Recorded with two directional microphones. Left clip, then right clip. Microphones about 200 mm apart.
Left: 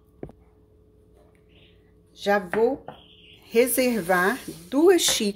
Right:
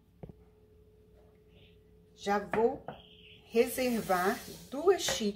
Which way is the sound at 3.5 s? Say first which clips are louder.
Left 8 dB; 55° left (ahead or behind).